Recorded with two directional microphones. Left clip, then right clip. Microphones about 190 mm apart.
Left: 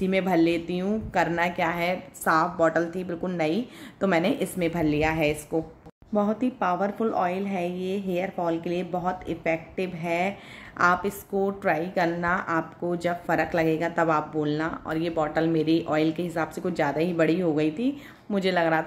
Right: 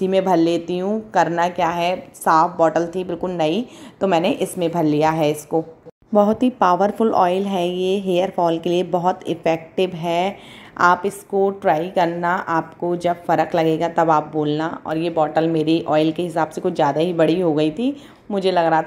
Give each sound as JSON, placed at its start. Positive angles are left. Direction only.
{"t": 0.0, "sound": "a woman's voice", "side_deg": -15}